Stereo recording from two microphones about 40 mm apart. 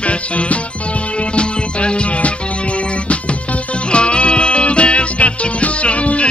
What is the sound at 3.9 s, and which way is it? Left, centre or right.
Music, left.